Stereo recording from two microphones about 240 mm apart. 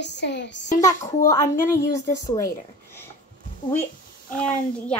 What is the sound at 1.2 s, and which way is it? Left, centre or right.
A woman's voice, centre.